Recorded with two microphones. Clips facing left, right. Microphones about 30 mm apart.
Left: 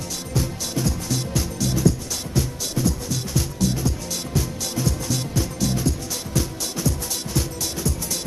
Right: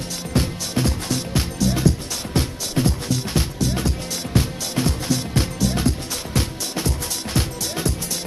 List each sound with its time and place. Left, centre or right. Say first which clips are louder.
0.3 s music: right 3 dB; right